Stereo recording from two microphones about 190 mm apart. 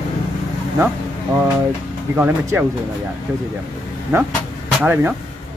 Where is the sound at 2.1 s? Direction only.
10° right (ahead or behind).